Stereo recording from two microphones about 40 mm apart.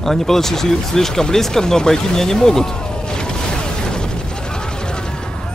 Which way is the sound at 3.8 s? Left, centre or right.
Centre.